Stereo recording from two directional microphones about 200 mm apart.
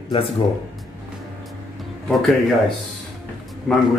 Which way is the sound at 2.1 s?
Centre (ahead or behind).